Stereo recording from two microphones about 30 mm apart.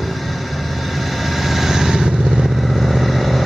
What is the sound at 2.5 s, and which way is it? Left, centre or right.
Vehicle, centre.